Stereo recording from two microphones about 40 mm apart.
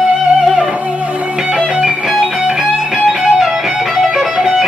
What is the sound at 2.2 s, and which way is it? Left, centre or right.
Music, centre.